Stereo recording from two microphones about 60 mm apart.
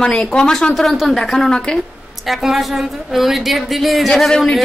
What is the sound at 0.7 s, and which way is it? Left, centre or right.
Speech, centre.